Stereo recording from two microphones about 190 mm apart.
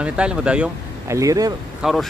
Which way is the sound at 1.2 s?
20° right (ahead or behind).